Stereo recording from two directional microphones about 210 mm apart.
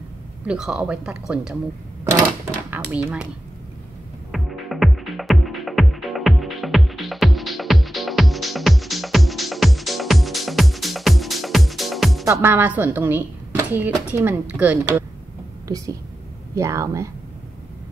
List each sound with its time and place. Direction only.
0.5 s speech: 5° right (ahead or behind)
2.9 s speech: 5° right (ahead or behind)
4.3 s music: centre (ahead or behind)
12.3 s speech: 10° right (ahead or behind)